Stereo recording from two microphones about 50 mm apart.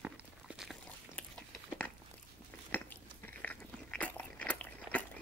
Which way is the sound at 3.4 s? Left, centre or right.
Left.